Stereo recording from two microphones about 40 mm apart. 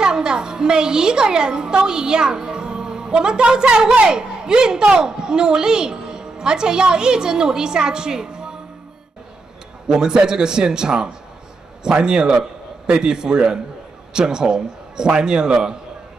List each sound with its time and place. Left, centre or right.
0.0 s a woman's voice: centre
9.8 s a woman's voice: centre